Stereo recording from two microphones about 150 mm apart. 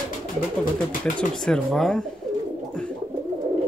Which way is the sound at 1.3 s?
5° left (ahead or behind).